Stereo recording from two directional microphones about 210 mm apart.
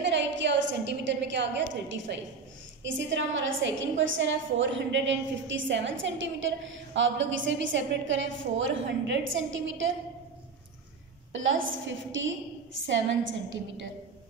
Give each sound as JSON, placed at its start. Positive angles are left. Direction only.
{"t": 0.0, "sound": "a sound", "side_deg": -60}
{"t": 2.8, "sound": "a woman's voice", "side_deg": -60}
{"t": 11.4, "sound": "a woman's voice", "side_deg": -65}